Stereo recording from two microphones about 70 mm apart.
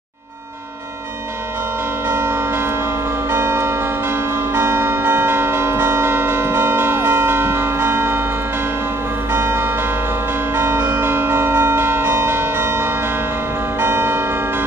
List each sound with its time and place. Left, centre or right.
2.0 s music: right
3.3 s church bell: right
9.3 s change ringing: right
10.5 s church bell: right